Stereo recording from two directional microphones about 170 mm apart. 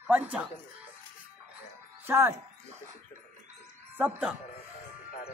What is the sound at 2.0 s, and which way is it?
Speech, 15° right (ahead or behind).